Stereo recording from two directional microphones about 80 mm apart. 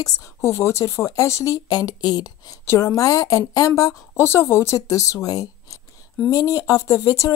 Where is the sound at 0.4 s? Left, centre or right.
Left.